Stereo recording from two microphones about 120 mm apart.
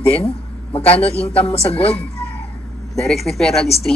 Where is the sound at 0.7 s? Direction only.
55° left (ahead or behind).